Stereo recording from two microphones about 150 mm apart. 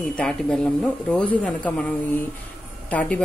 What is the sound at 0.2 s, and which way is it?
A woman's voice, 5° left (ahead or behind).